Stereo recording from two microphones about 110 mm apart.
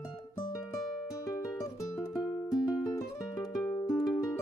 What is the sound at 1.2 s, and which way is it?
Music, 30° left (ahead or behind).